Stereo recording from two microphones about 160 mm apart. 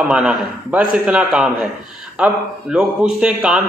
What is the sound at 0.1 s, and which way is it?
A man's voice, 5° right (ahead or behind).